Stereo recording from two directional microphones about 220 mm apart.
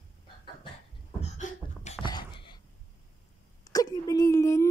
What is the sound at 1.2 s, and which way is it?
Beatboxing, 30° left (ahead or behind).